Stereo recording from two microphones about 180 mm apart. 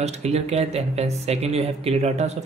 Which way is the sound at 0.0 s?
35° right (ahead or behind).